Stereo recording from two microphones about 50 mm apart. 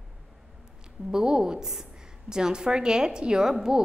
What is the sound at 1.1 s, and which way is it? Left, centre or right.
A woman's voice, centre.